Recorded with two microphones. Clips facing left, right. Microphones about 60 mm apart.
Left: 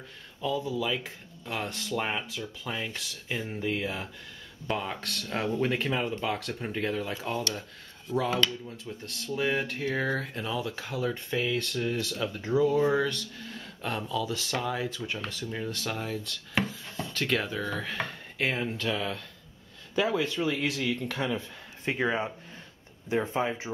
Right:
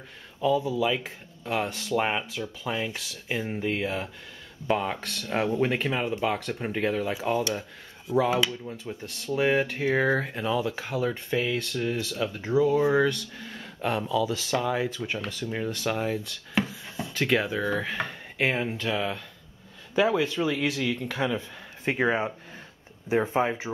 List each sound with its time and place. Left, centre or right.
0.4 s speech: centre
2.0 s speech: centre
14.0 s speech: centre
23.3 s speech: centre